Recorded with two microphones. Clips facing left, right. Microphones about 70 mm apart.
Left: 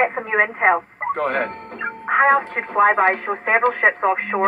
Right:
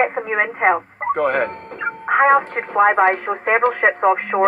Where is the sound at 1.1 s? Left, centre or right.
Centre.